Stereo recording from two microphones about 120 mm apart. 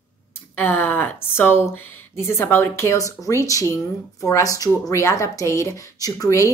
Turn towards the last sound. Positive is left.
turn(degrees=30)  # may be behind; listen again after turning